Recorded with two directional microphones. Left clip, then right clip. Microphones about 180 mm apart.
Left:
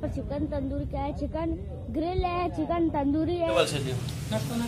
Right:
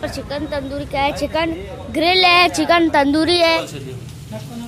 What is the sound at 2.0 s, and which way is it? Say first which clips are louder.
Speech: right 17 dB; 25° right (ahead or behind).